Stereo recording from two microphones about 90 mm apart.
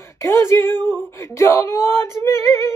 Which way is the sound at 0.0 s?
30° left (ahead or behind).